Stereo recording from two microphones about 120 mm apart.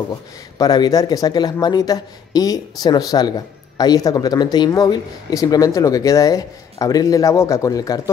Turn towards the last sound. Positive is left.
turn(degrees=30)  # may be behind; listen again after turning